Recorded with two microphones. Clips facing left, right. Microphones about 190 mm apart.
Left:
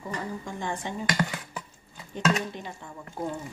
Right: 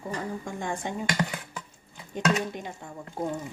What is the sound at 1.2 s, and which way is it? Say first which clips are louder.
Dishes: left 1 dB; 20° right (ahead or behind).